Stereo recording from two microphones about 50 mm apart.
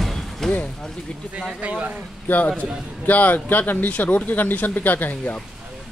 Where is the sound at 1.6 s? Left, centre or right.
Right.